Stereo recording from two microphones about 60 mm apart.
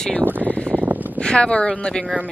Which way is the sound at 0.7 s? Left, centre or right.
Right.